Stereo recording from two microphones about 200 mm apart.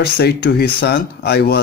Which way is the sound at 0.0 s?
55° left (ahead or behind).